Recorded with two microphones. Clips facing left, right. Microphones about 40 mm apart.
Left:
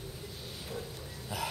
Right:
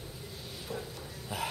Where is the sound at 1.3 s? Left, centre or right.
Right.